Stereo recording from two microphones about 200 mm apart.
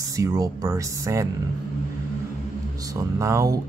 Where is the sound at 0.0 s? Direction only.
15° right (ahead or behind).